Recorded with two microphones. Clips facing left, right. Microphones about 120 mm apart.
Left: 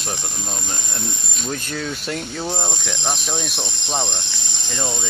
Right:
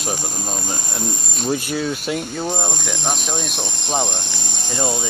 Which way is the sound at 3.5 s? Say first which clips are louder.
Right 2 dB; 50° right (ahead or behind).